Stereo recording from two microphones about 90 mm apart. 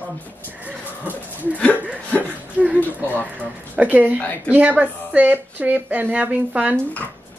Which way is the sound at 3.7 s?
15° right (ahead or behind).